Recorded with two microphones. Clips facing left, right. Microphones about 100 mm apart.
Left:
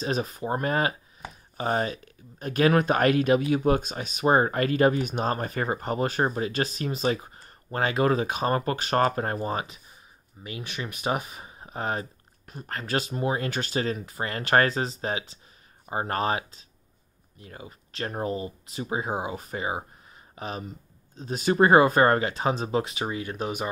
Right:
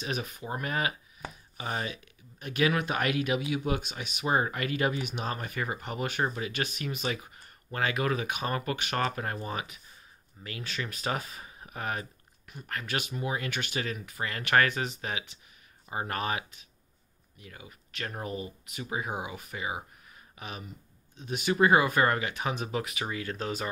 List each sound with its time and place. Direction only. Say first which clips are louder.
0.0 s speech: left 7 dB; 35° left (ahead or behind)
10.4 s speech: left 2 dB; 20° left (ahead or behind)